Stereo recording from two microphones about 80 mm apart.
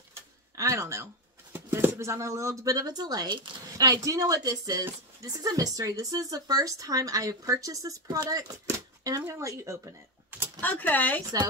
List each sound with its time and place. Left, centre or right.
0.6 s speech: right
1.5 s speech: right
8.6 s a sound: right
9.3 s speech: right
10.6 s speech: left